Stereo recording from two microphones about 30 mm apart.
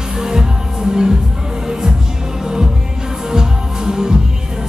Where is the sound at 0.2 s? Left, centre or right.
Right.